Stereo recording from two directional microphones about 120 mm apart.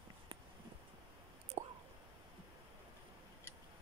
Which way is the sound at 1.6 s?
90° right.